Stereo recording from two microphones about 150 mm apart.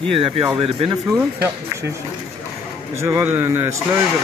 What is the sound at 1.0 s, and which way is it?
Speech, 15° right (ahead or behind).